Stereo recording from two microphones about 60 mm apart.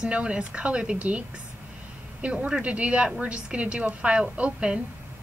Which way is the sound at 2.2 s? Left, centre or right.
Centre.